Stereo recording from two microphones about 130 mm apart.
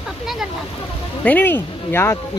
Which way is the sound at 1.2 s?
15° left (ahead or behind).